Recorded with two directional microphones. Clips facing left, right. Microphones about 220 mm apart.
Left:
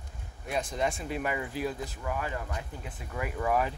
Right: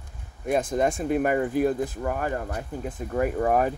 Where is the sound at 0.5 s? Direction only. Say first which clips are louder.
Right 8 dB; 50° right (ahead or behind).